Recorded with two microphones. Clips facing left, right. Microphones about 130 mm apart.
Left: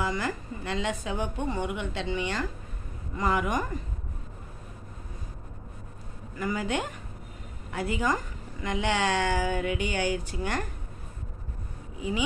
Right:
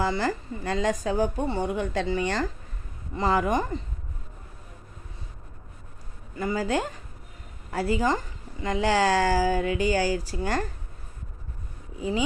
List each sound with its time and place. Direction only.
0.0 s a woman's voice: 35° right (ahead or behind)
6.3 s a woman's voice: 30° right (ahead or behind)